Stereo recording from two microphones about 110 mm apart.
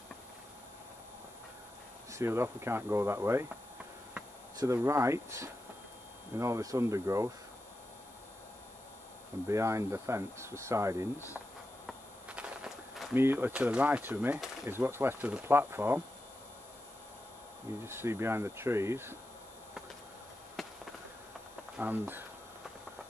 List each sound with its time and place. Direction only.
2.1 s speech: 25° right (ahead or behind)
4.6 s speech: 25° right (ahead or behind)
9.5 s speech: 25° right (ahead or behind)
12.3 s walk: 10° right (ahead or behind)
13.1 s speech: 20° right (ahead or behind)
17.8 s speech: 25° right (ahead or behind)
20.6 s fireworks: centre (ahead or behind)
21.7 s speech: 15° right (ahead or behind)